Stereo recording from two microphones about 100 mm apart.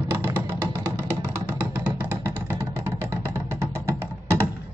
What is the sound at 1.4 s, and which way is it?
Music, 15° right (ahead or behind).